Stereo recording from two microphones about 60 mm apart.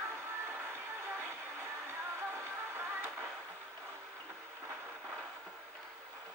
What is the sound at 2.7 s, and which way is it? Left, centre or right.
Music, right.